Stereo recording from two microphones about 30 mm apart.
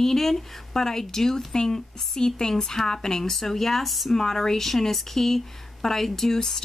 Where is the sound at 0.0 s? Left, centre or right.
Centre.